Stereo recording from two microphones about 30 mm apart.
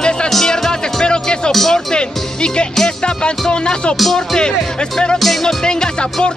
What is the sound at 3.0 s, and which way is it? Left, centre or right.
Music, left.